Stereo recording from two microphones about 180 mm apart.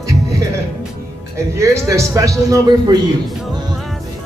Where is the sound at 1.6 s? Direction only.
15° right (ahead or behind).